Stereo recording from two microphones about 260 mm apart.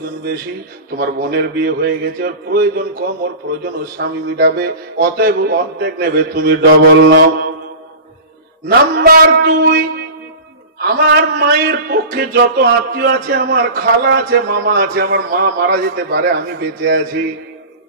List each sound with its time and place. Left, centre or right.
0.0 s a man's voice: right
8.6 s a man's voice: right